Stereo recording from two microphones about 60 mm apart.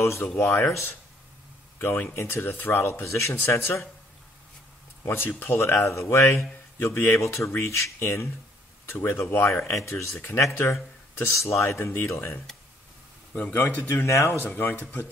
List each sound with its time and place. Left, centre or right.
0.0 s speech: left
2.5 s speech: left
2.8 s speech: left
5.0 s speech: left
14.0 s speech: left
14.5 s speech: left